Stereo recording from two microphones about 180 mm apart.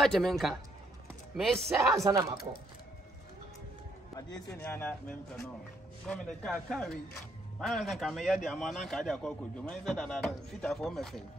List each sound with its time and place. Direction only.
0.0 s a man's voice: centre (ahead or behind)
2.0 s speech: 20° right (ahead or behind)
4.6 s a man's voice: 10° left (ahead or behind)